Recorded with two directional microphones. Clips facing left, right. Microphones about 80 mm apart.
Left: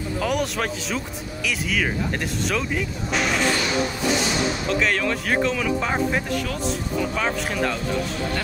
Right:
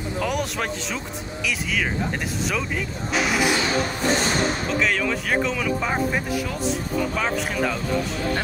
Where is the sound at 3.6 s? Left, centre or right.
Right.